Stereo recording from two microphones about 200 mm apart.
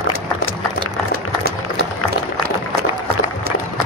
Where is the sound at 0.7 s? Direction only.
50° right (ahead or behind).